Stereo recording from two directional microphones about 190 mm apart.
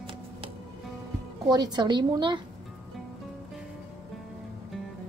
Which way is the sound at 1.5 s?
20° right (ahead or behind).